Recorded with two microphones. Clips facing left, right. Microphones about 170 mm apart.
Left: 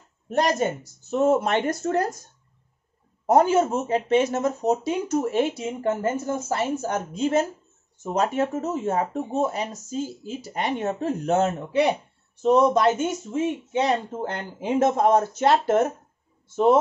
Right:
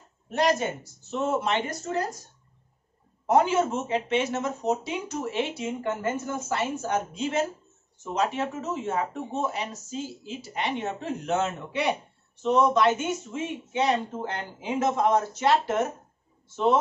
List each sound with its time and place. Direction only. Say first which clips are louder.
0.3 s speech: left 2 dB; 45° left (ahead or behind)
3.3 s speech: left 4 dB; 45° left (ahead or behind)